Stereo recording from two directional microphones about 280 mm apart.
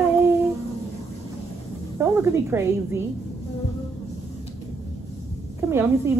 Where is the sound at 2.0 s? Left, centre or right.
Centre.